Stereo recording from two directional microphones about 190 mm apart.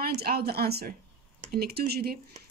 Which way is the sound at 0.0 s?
55° right (ahead or behind).